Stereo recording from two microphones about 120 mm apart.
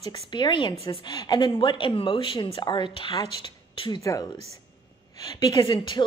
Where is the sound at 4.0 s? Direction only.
25° left (ahead or behind).